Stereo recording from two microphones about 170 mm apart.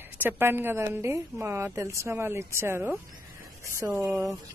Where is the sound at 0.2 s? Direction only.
10° right (ahead or behind).